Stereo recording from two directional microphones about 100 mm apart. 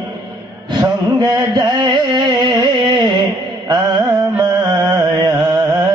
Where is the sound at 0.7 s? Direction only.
45° right (ahead or behind).